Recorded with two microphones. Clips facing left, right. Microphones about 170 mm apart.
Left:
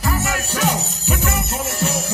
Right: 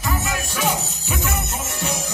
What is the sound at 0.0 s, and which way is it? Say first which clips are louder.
Music: left 2 dB; 15° right (ahead or behind).